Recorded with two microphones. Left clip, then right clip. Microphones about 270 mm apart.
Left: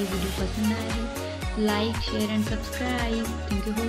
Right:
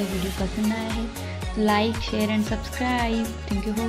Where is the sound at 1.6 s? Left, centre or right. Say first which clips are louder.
Right 4 dB; centre.